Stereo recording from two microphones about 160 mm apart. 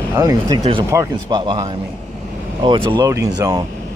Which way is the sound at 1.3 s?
30° right (ahead or behind).